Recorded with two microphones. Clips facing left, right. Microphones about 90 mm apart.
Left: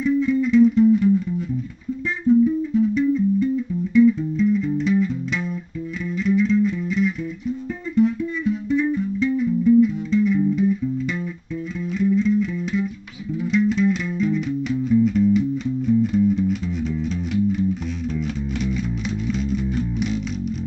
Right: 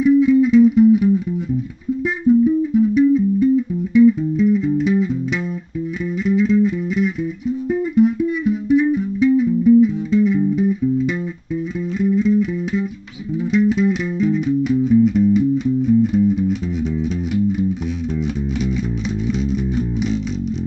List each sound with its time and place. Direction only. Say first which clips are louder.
0.0 s music: right 7 dB; 10° right (ahead or behind)
2.2 s music: right 3 dB; 10° right (ahead or behind)
6.2 s music: right 3 dB; 10° right (ahead or behind)
12.0 s music: right 3 dB; 10° right (ahead or behind)
19.2 s music: right 3 dB; 5° right (ahead or behind)